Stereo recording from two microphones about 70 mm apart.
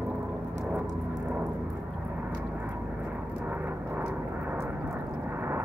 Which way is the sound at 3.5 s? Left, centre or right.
Right.